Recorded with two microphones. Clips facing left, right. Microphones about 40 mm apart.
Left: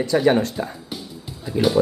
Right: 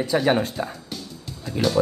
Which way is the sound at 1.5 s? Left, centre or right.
Centre.